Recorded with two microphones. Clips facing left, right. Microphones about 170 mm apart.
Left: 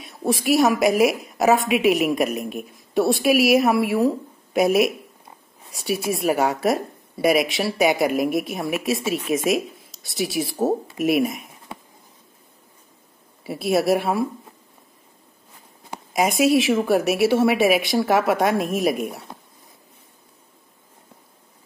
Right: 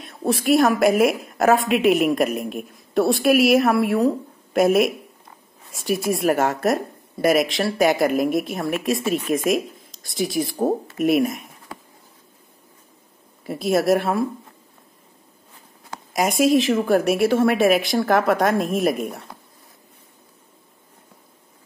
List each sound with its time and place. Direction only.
0.0 s a woman's voice: centre (ahead or behind)
11.7 s a sound: 25° left (ahead or behind)
13.5 s a woman's voice: 5° left (ahead or behind)
16.1 s a woman's voice: centre (ahead or behind)